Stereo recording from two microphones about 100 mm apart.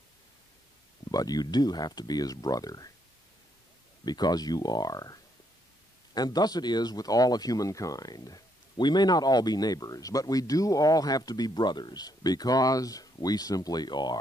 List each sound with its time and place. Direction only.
1.1 s speech: 40° left (ahead or behind)
4.0 s speech: 45° left (ahead or behind)